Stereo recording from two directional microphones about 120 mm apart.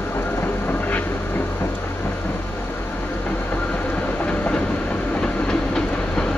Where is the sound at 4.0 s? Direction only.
10° left (ahead or behind).